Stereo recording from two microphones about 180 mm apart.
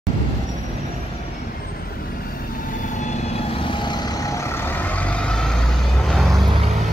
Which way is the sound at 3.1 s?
30° left (ahead or behind).